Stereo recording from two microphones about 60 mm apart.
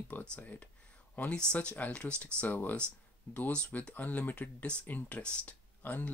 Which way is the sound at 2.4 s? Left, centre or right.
Left.